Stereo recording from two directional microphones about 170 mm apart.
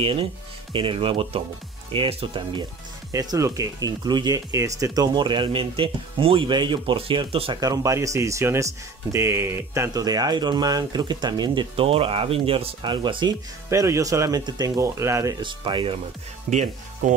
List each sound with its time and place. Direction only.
0.0 s speech: 30° right (ahead or behind)
3.1 s speech: 20° right (ahead or behind)
7.7 s speech: 20° right (ahead or behind)
13.7 s speech: 15° right (ahead or behind)
15.4 s speech: 30° right (ahead or behind)
16.4 s speech: 45° right (ahead or behind)